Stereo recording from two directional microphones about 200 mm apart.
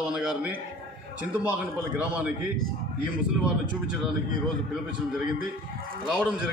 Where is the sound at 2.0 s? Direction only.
5° right (ahead or behind).